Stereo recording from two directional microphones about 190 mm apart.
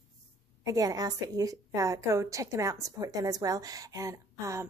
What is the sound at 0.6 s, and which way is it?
A woman's voice, 20° right (ahead or behind).